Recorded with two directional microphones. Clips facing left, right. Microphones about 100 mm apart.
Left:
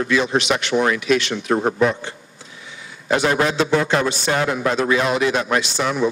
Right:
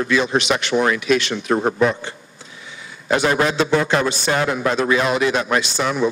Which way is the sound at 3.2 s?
30° right (ahead or behind).